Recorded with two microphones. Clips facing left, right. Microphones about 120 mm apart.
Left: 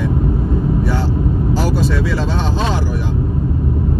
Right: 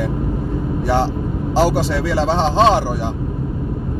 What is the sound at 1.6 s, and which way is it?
Speech, 90° right.